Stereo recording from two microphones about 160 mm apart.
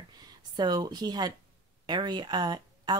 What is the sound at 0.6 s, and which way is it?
Speech, 25° right (ahead or behind).